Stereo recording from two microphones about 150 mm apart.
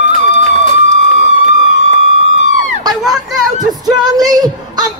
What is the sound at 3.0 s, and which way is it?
Children playing, 5° right (ahead or behind).